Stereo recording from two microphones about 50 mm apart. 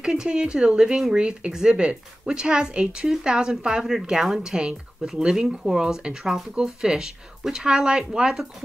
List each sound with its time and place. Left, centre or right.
0.0 s speech: centre